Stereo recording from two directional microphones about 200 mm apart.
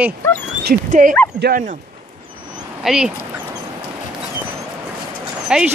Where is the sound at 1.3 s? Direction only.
55° right (ahead or behind).